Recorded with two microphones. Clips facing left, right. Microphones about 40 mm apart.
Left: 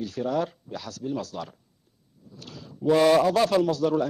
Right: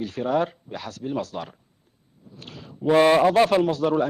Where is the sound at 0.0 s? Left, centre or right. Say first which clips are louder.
Right 3 dB; right.